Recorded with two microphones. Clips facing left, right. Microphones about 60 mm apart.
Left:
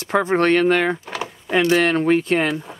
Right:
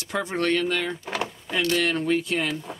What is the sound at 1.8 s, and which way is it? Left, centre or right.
Speech, left.